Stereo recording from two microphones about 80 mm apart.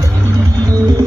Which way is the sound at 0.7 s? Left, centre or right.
Right.